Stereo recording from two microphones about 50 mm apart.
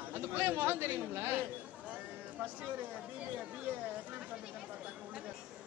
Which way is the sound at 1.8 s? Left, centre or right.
Right.